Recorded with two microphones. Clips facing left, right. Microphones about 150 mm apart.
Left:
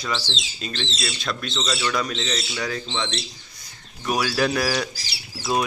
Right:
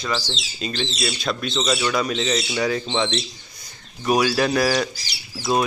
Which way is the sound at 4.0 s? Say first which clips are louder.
Right 5 dB; 15° right (ahead or behind).